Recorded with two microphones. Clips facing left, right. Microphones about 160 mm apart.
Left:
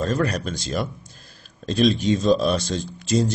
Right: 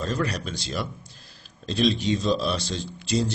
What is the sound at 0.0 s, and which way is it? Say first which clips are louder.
Speech: left 5 dB; 50° left (ahead or behind).